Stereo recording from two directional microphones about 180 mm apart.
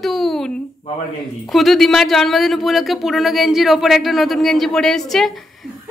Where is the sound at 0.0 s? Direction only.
Centre (ahead or behind).